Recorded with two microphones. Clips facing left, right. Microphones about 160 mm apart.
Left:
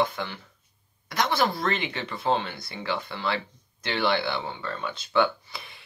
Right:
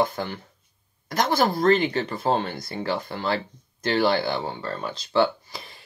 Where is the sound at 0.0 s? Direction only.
40° right (ahead or behind).